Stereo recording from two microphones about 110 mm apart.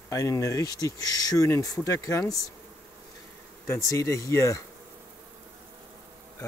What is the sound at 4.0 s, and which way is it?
Speech, 25° left (ahead or behind).